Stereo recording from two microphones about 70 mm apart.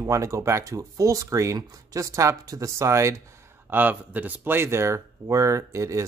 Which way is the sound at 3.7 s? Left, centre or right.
Right.